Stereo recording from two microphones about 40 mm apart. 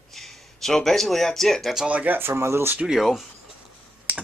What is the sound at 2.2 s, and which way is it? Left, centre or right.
Speech, right.